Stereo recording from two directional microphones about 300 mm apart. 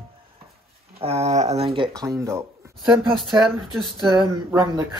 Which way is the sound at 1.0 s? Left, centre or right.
Right.